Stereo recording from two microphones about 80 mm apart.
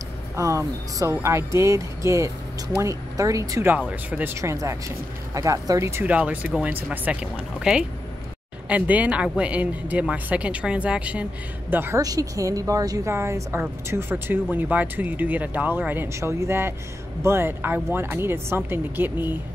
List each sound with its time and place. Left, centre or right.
0.4 s speech: right
3.6 s speech: right
4.4 s speech: right
6.0 s speech: centre
11.7 s speech: right
12.0 s speech: right
13.1 s speech: right
16.2 s speech: right